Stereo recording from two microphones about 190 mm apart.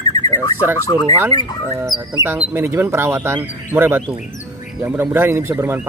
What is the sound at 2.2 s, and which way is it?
Speech, 10° right (ahead or behind).